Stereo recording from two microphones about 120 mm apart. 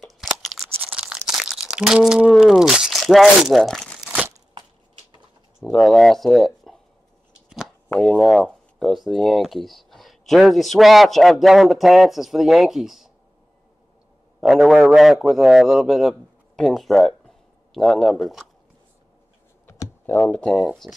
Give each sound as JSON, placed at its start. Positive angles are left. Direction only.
{"t": 0.0, "sound": "crunch", "side_deg": 5}
{"t": 0.7, "sound": "crumpling", "side_deg": -10}
{"t": 5.6, "sound": "speech", "side_deg": 0}
{"t": 7.4, "sound": "a sound", "side_deg": -5}
{"t": 7.9, "sound": "speech", "side_deg": 5}
{"t": 14.4, "sound": "speech", "side_deg": -5}
{"t": 19.6, "sound": "computer keyboard", "side_deg": 25}
{"t": 20.1, "sound": "speech", "side_deg": 10}